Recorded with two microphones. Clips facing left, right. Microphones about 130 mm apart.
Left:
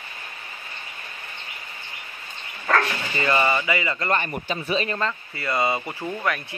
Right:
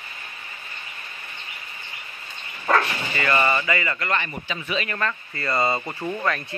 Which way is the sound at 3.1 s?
20° left (ahead or behind).